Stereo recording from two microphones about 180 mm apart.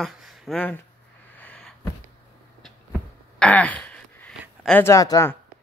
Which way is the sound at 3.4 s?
5° left (ahead or behind).